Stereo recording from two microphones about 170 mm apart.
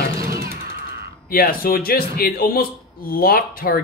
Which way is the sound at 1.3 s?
60° left (ahead or behind).